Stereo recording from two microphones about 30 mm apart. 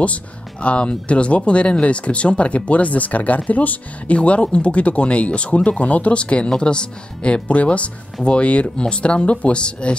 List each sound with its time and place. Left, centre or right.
0.0 s speech: left
4.2 s speech: left
7.4 s speech: left